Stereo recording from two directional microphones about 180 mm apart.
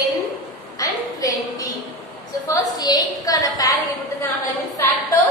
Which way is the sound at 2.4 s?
20° left (ahead or behind).